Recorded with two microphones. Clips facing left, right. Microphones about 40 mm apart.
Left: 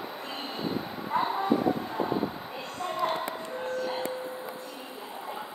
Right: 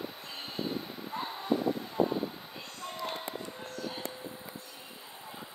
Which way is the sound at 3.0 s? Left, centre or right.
Left.